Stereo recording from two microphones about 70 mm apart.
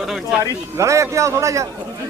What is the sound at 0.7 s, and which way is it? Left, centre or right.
Speech, right.